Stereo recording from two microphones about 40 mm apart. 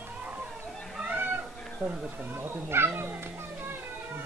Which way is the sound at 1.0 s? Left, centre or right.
Right.